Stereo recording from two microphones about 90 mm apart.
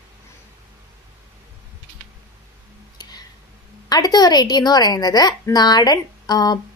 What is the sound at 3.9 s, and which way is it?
A woman's voice, 45° left (ahead or behind).